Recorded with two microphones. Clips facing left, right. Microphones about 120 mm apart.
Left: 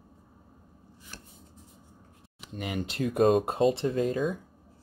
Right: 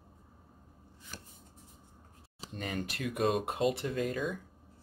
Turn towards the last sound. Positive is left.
turn(degrees=25)  # may be behind; listen again after turning